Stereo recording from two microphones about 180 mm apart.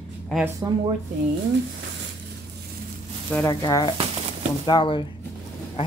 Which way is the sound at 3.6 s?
20° left (ahead or behind).